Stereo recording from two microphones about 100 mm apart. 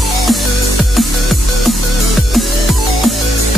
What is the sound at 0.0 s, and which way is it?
Music, centre (ahead or behind).